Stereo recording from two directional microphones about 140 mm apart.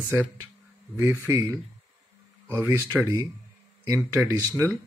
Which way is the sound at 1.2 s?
20° right (ahead or behind).